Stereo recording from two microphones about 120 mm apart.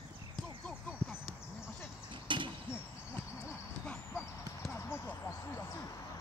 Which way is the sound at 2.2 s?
45° right (ahead or behind).